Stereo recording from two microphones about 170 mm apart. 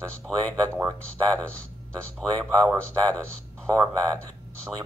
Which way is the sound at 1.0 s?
5° left (ahead or behind).